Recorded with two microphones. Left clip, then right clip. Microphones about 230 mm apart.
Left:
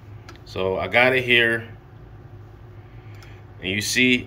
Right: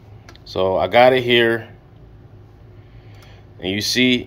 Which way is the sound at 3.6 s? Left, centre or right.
Centre.